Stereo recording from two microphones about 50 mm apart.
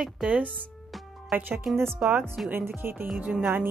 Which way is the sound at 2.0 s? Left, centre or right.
Right.